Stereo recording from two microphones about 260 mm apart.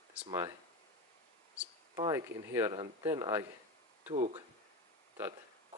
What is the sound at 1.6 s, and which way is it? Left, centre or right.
Speech, centre.